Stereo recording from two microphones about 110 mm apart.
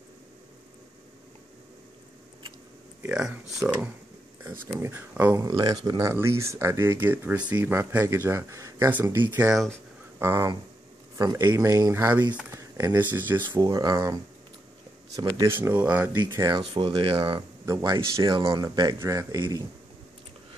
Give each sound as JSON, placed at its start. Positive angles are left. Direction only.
{"t": 3.1, "sound": "speech", "side_deg": -5}
{"t": 5.3, "sound": "speech", "side_deg": -35}
{"t": 6.1, "sound": "speech", "side_deg": -25}
{"t": 13.5, "sound": "speech", "side_deg": -35}
{"t": 15.3, "sound": "speech", "side_deg": -25}
{"t": 16.4, "sound": "speech", "side_deg": -50}
{"t": 17.6, "sound": "speech", "side_deg": -30}